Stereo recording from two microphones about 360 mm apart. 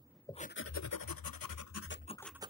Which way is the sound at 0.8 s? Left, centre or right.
Left.